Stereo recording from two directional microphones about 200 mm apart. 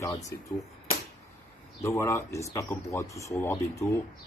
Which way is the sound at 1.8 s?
15° left (ahead or behind).